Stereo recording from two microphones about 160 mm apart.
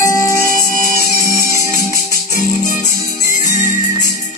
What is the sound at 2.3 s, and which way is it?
Music, 60° left (ahead or behind).